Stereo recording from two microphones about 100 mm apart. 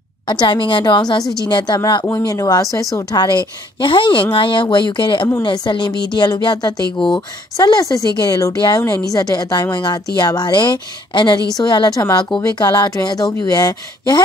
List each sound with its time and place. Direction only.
0.3 s a woman's voice: 50° left (ahead or behind)